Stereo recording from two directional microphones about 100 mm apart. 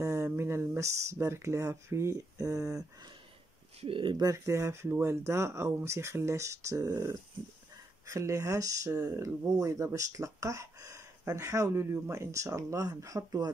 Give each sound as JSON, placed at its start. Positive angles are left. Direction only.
{"t": 0.0, "sound": "speech", "side_deg": -30}
{"t": 3.8, "sound": "speech", "side_deg": -55}
{"t": 4.2, "sound": "speech", "side_deg": -30}